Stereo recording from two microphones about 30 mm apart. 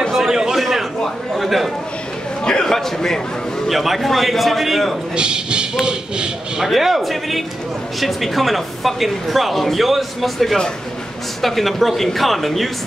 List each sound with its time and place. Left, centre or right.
0.1 s a sound: centre
1.3 s a man's voice: centre
2.6 s a man's voice: centre
3.6 s speech: centre
5.1 s speech: right
6.7 s speech: centre